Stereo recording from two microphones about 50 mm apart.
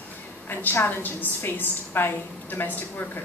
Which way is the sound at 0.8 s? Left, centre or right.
Left.